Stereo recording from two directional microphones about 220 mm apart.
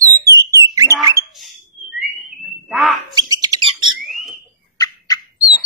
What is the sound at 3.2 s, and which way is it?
Bird, 15° right (ahead or behind).